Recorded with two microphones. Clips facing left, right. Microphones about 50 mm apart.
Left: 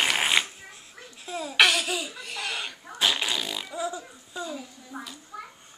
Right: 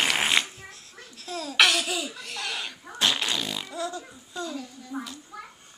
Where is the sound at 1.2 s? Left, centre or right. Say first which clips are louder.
Left 1 dB; centre.